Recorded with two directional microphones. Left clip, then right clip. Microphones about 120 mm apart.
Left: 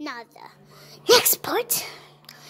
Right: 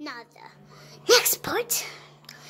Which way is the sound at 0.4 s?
30° left (ahead or behind).